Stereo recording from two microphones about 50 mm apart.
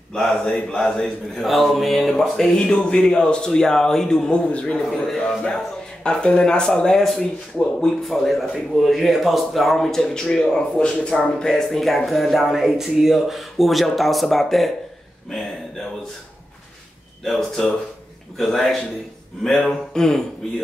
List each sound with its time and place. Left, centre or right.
0.1 s speech: centre
2.5 s speech: centre
4.5 s speech: left
5.2 s speech: centre
7.2 s speech: left
8.0 s speech: centre
17.2 s a man's voice: centre